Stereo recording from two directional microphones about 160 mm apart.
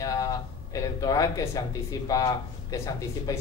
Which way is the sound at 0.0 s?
20° left (ahead or behind).